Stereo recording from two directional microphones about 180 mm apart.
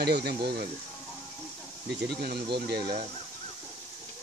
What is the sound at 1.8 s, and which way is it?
Speech, 65° right (ahead or behind).